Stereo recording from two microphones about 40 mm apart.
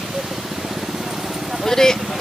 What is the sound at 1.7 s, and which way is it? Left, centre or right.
Speech, centre.